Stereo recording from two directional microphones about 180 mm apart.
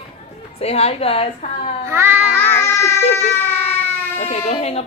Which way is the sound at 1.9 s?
10° right (ahead or behind).